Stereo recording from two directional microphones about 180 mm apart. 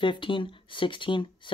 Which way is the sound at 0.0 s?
25° left (ahead or behind).